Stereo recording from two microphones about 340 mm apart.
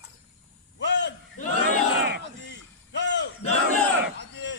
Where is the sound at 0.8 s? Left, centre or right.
Left.